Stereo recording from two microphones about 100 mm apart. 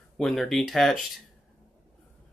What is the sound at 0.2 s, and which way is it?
Speech, centre (ahead or behind).